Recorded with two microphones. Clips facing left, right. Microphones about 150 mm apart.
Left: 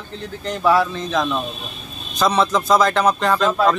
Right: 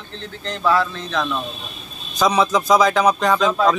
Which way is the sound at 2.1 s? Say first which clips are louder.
Even; centre (ahead or behind).